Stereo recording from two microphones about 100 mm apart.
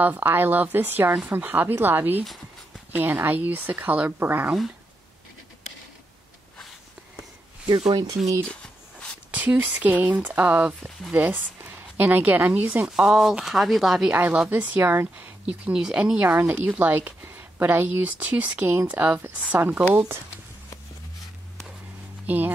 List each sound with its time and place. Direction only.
0.0 s a woman's voice: 20° right (ahead or behind)
7.9 s speech: 40° right (ahead or behind)
8.5 s a sound: 10° left (ahead or behind)
9.3 s a woman's voice: 15° right (ahead or behind)
14.1 s a woman's voice: 15° right (ahead or behind)
22.2 s speech: 15° right (ahead or behind)